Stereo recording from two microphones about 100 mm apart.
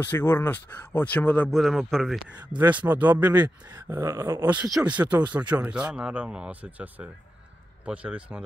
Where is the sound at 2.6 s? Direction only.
15° right (ahead or behind).